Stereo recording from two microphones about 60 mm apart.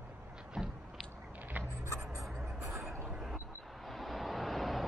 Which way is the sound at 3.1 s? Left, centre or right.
Centre.